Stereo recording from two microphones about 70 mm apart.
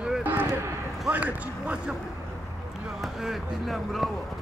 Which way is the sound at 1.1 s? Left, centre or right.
Right.